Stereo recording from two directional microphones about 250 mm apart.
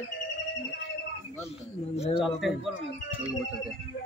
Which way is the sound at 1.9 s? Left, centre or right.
Left.